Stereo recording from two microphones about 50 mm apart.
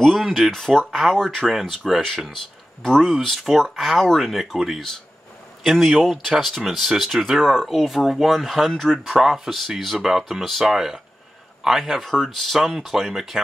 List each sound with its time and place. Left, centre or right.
0.0 s speech: centre
9.0 s speech: centre